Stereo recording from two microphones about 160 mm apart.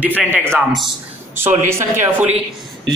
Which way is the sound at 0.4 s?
5° left (ahead or behind).